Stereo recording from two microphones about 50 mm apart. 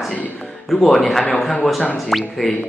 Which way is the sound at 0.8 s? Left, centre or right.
Centre.